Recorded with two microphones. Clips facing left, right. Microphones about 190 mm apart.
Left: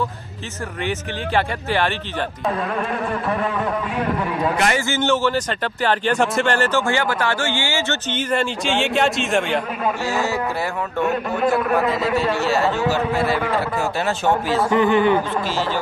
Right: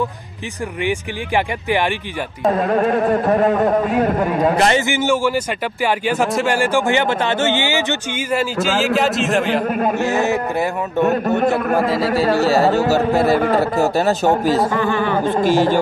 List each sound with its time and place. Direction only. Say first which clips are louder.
0.8 s a man's voice: right 2 dB; 15° right (ahead or behind)
2.4 s speech: right 9 dB; 40° right (ahead or behind)
4.8 s a man's voice: right 2 dB; 15° right (ahead or behind)
9.7 s a man's voice: right 5 dB; 45° right (ahead or behind)
9.9 s speech: right 5 dB; 20° right (ahead or behind)
11.1 s a man's voice: right 3 dB; 40° right (ahead or behind)
14.7 s a man's voice: left 3 dB; 20° left (ahead or behind)
15.2 s a man's voice: right 8 dB; 50° right (ahead or behind)